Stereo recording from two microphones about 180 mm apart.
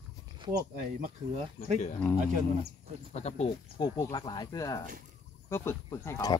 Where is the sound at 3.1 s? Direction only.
35° left (ahead or behind).